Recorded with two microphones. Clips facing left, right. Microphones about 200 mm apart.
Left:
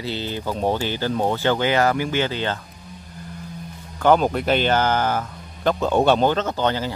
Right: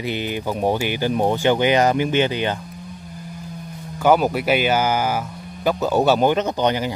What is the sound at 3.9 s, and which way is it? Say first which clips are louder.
Speech: right 1 dB; 10° right (ahead or behind).